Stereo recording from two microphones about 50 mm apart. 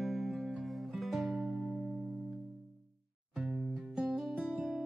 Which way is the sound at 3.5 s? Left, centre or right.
Centre.